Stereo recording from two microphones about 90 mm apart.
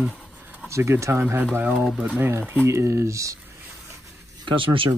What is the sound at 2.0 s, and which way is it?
Speech, 20° right (ahead or behind).